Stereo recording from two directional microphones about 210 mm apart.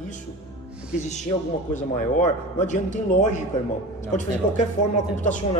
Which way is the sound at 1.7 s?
35° left (ahead or behind).